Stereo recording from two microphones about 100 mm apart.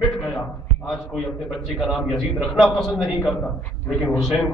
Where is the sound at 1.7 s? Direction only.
Centre (ahead or behind).